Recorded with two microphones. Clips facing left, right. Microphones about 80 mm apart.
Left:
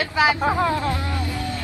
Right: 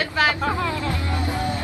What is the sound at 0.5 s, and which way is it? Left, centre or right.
Speech, left.